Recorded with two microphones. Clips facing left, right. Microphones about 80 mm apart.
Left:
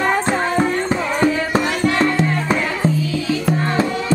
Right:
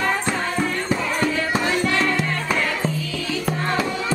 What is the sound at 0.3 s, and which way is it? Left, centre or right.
Music, left.